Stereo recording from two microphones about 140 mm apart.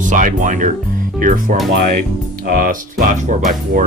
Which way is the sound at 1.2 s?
75° right (ahead or behind).